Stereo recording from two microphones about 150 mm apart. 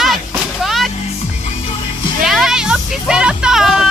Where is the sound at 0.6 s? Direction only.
Centre (ahead or behind).